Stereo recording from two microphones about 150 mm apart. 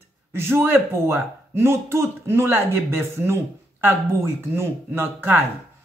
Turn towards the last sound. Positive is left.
turn(degrees=-15)  # may be behind; listen again after turning